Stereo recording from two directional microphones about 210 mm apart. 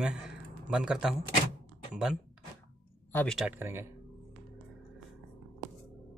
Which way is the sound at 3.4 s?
10° right (ahead or behind).